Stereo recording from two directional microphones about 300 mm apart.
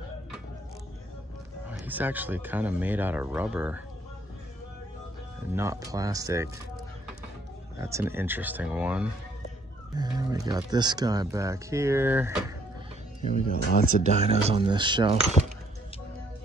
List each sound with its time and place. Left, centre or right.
1.7 s speech: centre
5.5 s speech: centre
7.8 s speech: centre
13.7 s speech: left
14.2 s speech: centre